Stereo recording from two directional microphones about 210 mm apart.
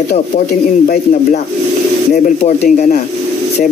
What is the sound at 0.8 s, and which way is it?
Speech, 35° left (ahead or behind).